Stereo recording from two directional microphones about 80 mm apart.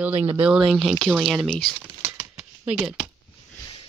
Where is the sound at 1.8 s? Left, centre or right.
Right.